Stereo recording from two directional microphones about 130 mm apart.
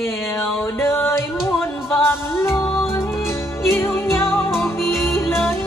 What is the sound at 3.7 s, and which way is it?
Music, 20° left (ahead or behind).